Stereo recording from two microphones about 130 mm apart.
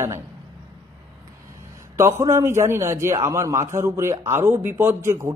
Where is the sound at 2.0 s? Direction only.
20° right (ahead or behind).